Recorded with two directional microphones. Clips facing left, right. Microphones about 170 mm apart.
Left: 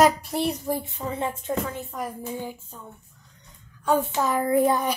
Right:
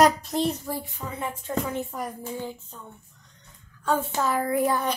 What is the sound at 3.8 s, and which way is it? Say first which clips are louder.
Speech: left 3 dB; 15° left (ahead or behind).